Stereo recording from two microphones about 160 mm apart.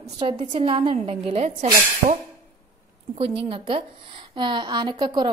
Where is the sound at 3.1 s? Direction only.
35° right (ahead or behind).